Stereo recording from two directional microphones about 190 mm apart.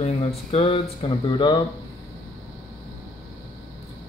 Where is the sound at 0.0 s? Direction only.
35° left (ahead or behind).